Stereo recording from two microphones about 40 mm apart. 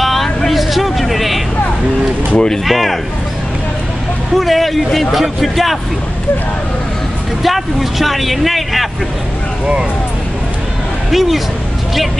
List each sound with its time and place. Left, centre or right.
0.0 s vehicle: centre
2.3 s speech: centre
2.6 s speech: centre
4.4 s speech: centre
7.4 s speech: centre
11.1 s speech: centre